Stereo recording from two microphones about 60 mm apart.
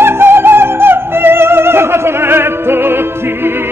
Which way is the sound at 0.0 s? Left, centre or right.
Right.